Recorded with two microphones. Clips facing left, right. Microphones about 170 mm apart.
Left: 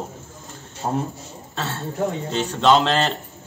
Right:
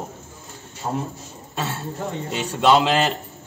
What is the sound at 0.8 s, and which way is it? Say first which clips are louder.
Speech: left 2 dB; 30° left (ahead or behind).